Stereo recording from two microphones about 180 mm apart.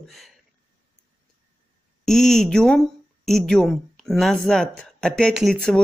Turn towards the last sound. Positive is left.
turn(degrees=0)  # may be behind; listen again after turning